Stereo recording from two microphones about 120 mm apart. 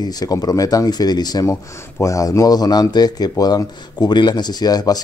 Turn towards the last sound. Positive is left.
turn(degrees=35)  # may be behind; listen again after turning